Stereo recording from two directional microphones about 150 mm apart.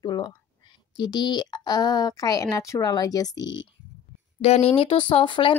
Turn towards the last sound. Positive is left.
turn(degrees=35)  # may be behind; listen again after turning